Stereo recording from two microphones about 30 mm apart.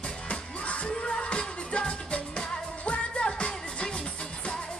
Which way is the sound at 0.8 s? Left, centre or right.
Left.